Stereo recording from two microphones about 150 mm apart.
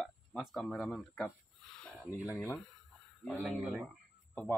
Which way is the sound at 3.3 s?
5° left (ahead or behind).